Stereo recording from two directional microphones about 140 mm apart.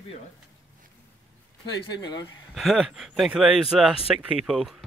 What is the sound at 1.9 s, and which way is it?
Speech, 30° left (ahead or behind).